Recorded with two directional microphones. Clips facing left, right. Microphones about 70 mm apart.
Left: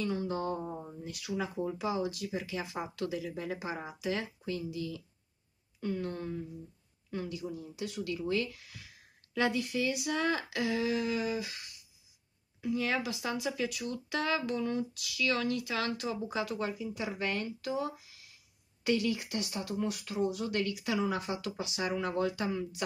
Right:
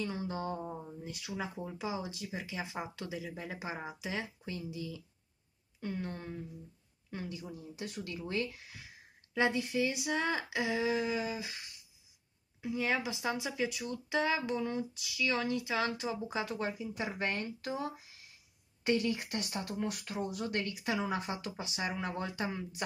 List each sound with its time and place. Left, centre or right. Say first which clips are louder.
0.0 s speech: left 4 dB; centre
12.6 s speech: left 1 dB; centre
16.4 s speech: left 2 dB; right